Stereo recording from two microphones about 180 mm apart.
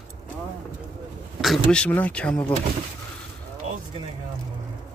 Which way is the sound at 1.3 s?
Centre (ahead or behind).